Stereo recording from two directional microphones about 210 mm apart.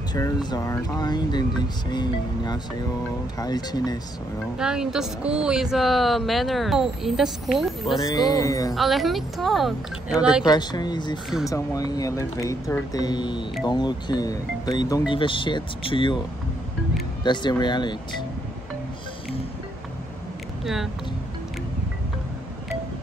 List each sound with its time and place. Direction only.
0.1 s speech: 20° left (ahead or behind)
4.6 s a woman's voice: 5° right (ahead or behind)
8.0 s speech: 20° left (ahead or behind)
8.7 s a woman's voice: centre (ahead or behind)
10.4 s speech: 20° left (ahead or behind)
17.2 s speech: 20° left (ahead or behind)
20.6 s a woman's voice: centre (ahead or behind)